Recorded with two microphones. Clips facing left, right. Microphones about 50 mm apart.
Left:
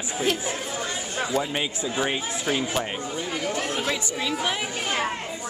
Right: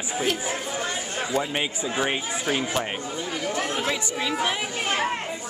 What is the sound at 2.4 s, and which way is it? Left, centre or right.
Speech, centre.